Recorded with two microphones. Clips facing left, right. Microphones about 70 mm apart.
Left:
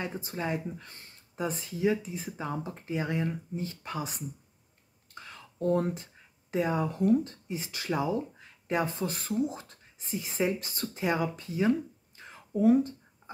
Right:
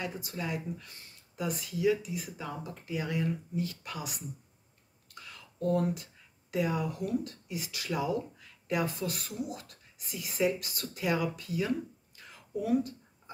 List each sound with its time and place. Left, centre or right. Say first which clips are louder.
0.0 s speech: left 3 dB; left
5.1 s whispering: left 3 dB; left
6.5 s speech: left 2 dB; left
12.2 s a sound: left 8 dB; left